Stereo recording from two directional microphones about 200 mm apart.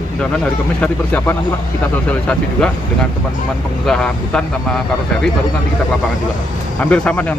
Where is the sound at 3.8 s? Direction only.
5° left (ahead or behind).